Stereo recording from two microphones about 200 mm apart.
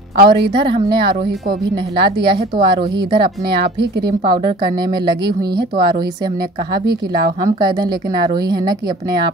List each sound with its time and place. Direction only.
0.2 s a woman's voice: 25° right (ahead or behind)